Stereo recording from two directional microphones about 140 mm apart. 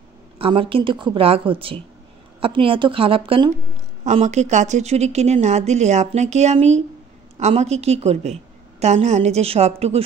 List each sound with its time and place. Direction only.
0.4 s speech: 40° right (ahead or behind)
4.0 s a woman's voice: 55° right (ahead or behind)